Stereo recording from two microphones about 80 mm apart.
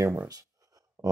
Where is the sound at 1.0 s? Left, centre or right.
Right.